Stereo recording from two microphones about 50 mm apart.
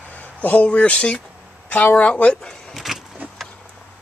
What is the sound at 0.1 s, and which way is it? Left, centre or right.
Speech, left.